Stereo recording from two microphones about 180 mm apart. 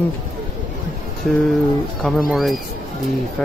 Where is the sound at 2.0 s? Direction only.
Centre (ahead or behind).